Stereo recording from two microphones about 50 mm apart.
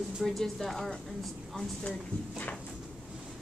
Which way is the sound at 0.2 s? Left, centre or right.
Centre.